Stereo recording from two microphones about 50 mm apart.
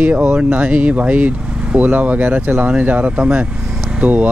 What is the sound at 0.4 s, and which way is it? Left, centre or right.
Speech, right.